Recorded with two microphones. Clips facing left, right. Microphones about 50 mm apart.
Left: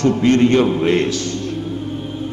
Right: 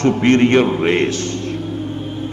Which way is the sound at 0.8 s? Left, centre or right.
Right.